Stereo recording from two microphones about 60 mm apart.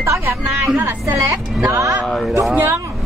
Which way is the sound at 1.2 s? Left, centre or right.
Right.